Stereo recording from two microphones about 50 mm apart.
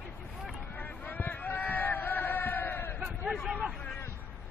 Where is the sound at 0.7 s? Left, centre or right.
Left.